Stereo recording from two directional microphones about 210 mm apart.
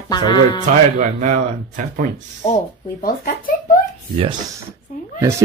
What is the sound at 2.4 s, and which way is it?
Speech, 30° left (ahead or behind).